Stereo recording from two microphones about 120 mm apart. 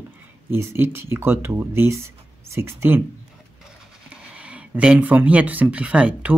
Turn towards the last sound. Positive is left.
turn(degrees=-10)  # may be behind; listen again after turning